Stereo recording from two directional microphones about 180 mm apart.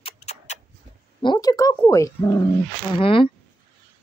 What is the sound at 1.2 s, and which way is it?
A woman's voice, 25° left (ahead or behind).